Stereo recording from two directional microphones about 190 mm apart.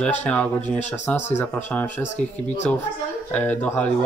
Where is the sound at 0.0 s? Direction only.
10° left (ahead or behind).